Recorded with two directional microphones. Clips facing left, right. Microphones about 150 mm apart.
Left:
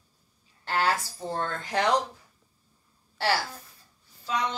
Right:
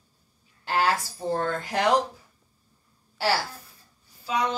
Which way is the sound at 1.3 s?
5° right (ahead or behind).